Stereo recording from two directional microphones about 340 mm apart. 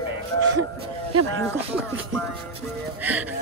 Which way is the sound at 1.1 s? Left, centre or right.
Right.